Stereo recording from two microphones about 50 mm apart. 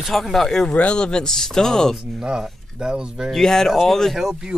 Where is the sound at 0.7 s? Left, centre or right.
Left.